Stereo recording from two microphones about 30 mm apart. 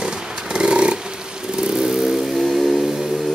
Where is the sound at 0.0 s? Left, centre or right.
Right.